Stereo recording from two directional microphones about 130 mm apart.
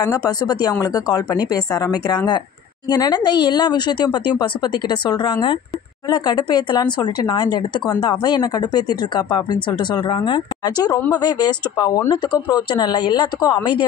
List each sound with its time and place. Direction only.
0.0 s a woman's voice: 30° left (ahead or behind)